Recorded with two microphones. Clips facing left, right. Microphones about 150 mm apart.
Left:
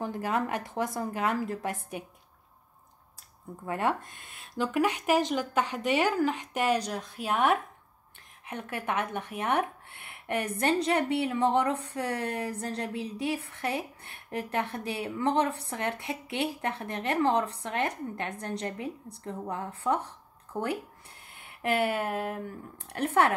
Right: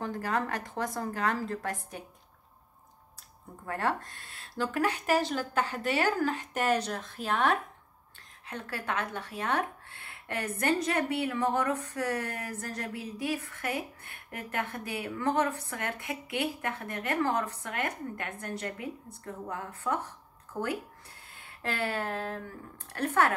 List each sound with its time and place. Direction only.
0.0 s a woman's voice: 20° left (ahead or behind)
3.6 s a woman's voice: 20° left (ahead or behind)
21.5 s a sound: 20° left (ahead or behind)
22.9 s speech: 20° left (ahead or behind)